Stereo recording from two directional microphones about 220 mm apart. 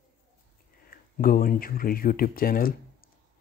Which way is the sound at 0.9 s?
40° left (ahead or behind).